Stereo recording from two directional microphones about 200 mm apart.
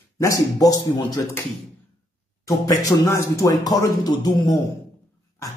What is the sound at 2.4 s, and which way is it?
A man's voice, 15° left (ahead or behind).